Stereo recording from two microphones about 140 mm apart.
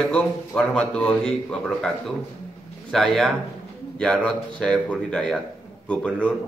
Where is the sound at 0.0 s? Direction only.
5° left (ahead or behind).